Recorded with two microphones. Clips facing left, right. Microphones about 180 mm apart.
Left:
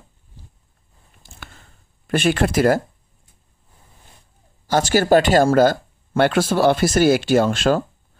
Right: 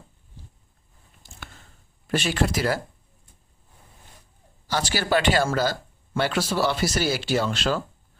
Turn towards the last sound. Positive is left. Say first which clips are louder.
# left 8 dB
turn(degrees=50)  # may be behind; listen again after turning